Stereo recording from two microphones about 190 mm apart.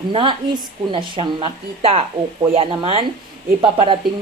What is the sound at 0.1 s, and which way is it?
Speech, 25° right (ahead or behind).